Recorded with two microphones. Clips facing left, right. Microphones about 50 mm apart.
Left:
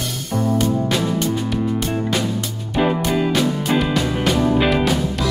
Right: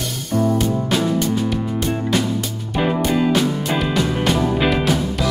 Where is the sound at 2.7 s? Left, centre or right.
Centre.